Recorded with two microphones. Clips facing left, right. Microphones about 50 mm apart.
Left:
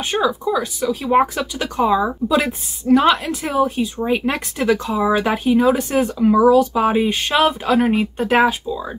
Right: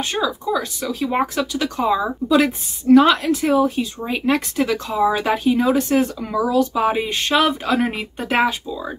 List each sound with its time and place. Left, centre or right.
0.0 s speech: centre
1.1 s speech: centre
3.3 s speech: centre